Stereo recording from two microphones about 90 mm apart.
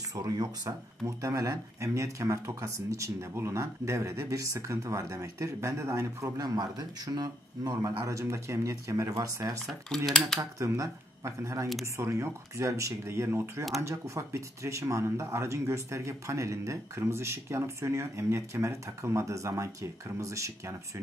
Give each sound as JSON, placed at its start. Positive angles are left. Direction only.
{"t": 0.1, "sound": "speech", "side_deg": -40}
{"t": 9.7, "sound": "speech", "side_deg": 5}
{"t": 10.6, "sound": "speech", "side_deg": -35}